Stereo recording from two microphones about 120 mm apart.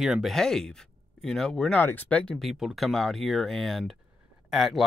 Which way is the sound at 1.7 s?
15° left (ahead or behind).